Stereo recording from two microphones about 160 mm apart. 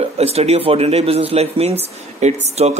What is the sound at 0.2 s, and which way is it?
Speech, 40° right (ahead or behind).